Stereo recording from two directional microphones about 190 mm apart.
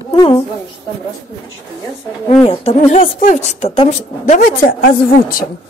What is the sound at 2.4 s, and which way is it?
A woman's voice, 35° left (ahead or behind).